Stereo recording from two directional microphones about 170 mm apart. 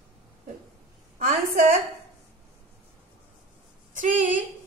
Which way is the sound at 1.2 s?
55° right (ahead or behind).